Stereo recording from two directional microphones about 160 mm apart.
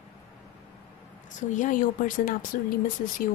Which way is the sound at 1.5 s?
55° left (ahead or behind).